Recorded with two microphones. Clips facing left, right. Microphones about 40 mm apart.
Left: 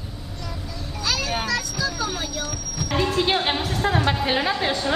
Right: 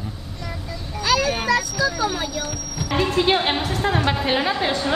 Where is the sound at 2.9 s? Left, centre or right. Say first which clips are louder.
Right 2 dB; centre.